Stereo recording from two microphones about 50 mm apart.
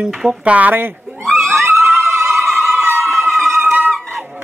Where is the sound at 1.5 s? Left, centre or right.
Right.